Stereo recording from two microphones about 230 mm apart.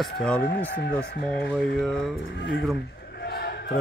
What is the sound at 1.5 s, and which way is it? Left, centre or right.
Speech, centre.